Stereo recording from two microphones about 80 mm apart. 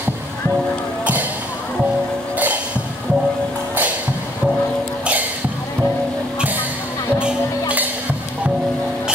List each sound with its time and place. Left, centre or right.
2.3 s music: centre
7.2 s music: centre